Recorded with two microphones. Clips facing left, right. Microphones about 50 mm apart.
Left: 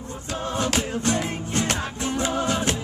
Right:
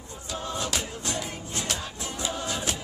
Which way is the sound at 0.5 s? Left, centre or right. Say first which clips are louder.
Left 7 dB; left.